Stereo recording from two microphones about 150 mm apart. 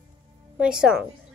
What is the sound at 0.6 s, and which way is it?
Speech, 5° right (ahead or behind).